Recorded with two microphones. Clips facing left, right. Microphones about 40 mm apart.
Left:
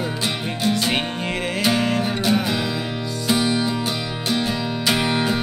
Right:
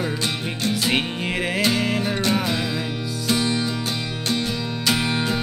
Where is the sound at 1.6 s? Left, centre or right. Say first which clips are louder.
Left 3 dB; centre.